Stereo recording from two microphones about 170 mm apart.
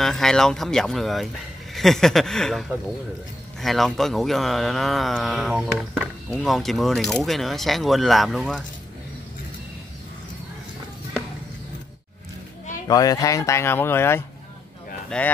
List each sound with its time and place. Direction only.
0.0 s speech: centre (ahead or behind)
3.6 s speech: centre (ahead or behind)
12.8 s speech: 20° left (ahead or behind)